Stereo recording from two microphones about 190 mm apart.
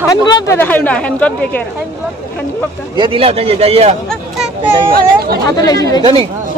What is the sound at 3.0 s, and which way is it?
Speech, 30° right (ahead or behind).